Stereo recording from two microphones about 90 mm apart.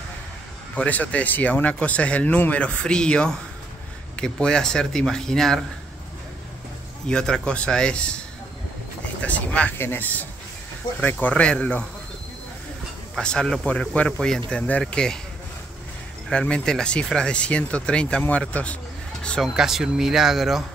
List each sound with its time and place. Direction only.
0.7 s speech: 15° left (ahead or behind)
7.1 s speech: 10° left (ahead or behind)
9.2 s speech: 15° left (ahead or behind)
13.1 s speech: 10° left (ahead or behind)
16.3 s speech: 10° left (ahead or behind)
19.4 s speech: 5° right (ahead or behind)